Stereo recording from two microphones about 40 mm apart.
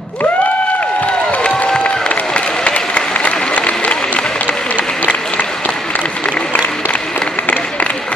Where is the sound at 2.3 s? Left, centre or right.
Left.